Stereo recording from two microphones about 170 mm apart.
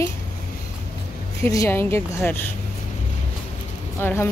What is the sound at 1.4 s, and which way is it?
A woman's voice, 15° left (ahead or behind).